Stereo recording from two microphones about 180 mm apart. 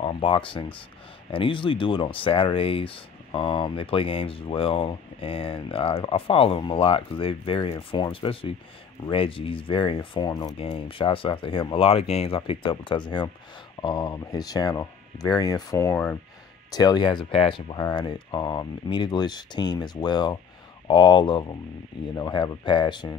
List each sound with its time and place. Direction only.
0.0 s speech: 30° left (ahead or behind); by 16.2 s 10° left (ahead or behind)
16.7 s speech: 25° left (ahead or behind)